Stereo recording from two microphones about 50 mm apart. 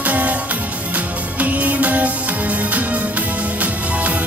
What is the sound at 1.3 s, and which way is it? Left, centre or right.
Music, right.